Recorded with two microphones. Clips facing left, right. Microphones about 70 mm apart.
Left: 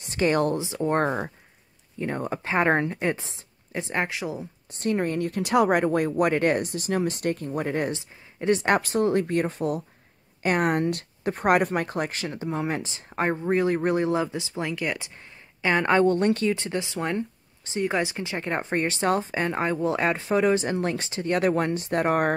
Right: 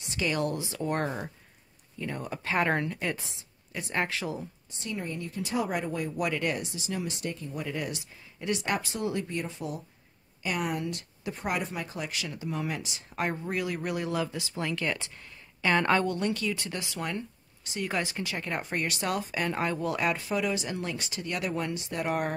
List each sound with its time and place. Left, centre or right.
0.0 s speech: left
0.6 s speech: left
1.0 s speech: left; by 4.5 s centre
4.6 s speech: left
7.9 s speech: left
8.7 s speech: left; by 16.0 s centre
16.0 s speech: left